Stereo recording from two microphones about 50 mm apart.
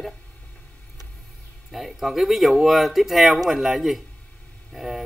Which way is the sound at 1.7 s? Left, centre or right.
Centre.